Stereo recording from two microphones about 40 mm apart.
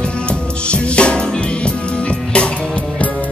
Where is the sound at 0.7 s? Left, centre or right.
Left.